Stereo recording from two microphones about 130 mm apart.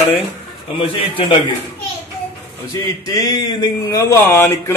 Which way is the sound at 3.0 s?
30° left (ahead or behind).